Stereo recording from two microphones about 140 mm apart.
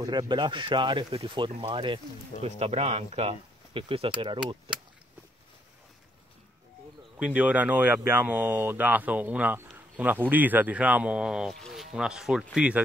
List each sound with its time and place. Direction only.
0.0 s speech: 30° right (ahead or behind)
2.4 s speech: 50° right (ahead or behind)
4.7 s keys jangling: 40° right (ahead or behind)
7.2 s speech: 10° right (ahead or behind)